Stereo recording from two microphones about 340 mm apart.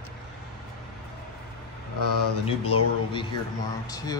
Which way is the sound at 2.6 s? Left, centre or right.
Centre.